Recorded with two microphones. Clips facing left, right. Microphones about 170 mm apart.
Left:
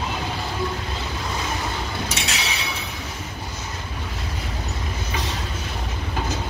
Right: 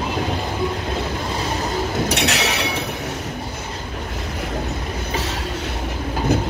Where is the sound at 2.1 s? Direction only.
65° right (ahead or behind).